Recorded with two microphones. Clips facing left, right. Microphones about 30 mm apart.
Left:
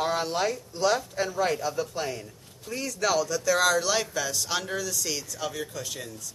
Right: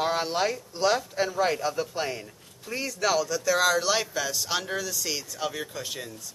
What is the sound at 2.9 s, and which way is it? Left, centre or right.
Speech, centre.